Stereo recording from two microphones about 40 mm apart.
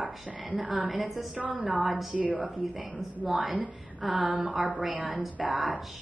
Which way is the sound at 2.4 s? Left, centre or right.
Centre.